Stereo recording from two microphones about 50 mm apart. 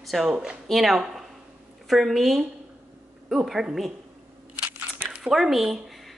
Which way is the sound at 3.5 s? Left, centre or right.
Centre.